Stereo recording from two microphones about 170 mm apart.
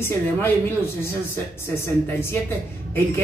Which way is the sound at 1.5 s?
15° left (ahead or behind).